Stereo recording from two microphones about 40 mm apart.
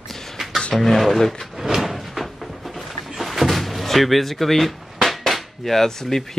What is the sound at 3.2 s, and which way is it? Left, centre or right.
Door, centre.